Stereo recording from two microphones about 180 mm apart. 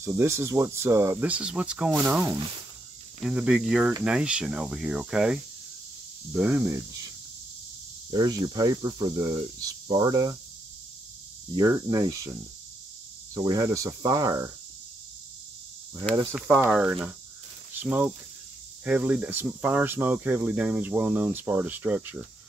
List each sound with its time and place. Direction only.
0.0 s speech: 15° right (ahead or behind)
8.1 s speech: 20° right (ahead or behind)
11.5 s speech: 20° right (ahead or behind)
16.3 s speech: centre (ahead or behind)